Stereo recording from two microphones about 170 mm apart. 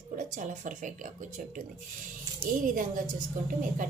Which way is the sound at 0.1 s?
50° right (ahead or behind).